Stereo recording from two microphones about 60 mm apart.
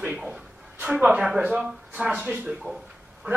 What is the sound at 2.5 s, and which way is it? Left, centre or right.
Speech, centre.